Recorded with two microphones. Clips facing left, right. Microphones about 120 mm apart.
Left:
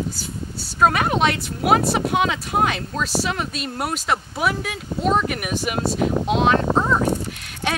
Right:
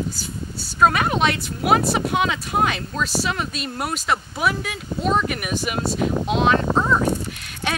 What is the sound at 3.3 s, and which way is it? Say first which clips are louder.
Speech: even; 50° left (ahead or behind).